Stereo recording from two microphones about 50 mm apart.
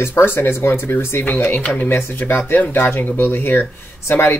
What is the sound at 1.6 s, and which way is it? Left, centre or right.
Speech, left.